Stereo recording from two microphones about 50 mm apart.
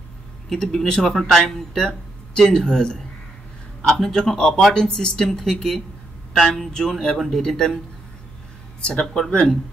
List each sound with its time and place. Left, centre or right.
0.5 s speech: centre
4.7 s speech: centre
6.7 s speech: centre
9.0 s speech: centre